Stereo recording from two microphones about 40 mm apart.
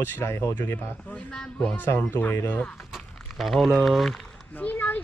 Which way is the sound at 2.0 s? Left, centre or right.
Left.